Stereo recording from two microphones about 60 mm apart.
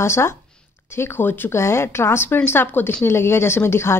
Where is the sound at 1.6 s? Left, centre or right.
Left.